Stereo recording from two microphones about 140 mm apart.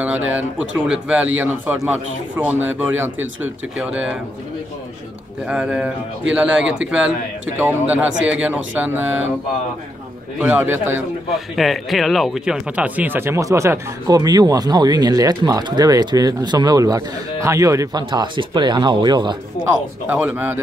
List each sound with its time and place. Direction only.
0.0 s a man's voice: 10° right (ahead or behind)
5.5 s a man's voice: 10° right (ahead or behind)
10.4 s a man's voice: 10° right (ahead or behind)
11.3 s speech: centre (ahead or behind); by 19.3 s 30° right (ahead or behind)
20.1 s a man's voice: 10° right (ahead or behind)